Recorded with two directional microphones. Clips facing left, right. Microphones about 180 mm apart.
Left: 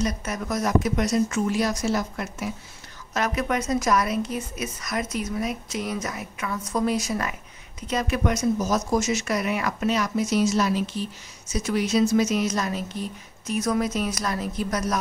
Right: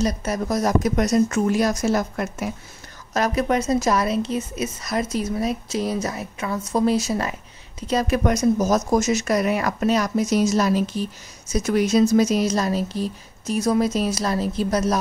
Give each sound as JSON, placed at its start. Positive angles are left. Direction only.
{"t": 0.0, "sound": "speech", "side_deg": -35}
{"t": 3.1, "sound": "a woman's voice", "side_deg": -35}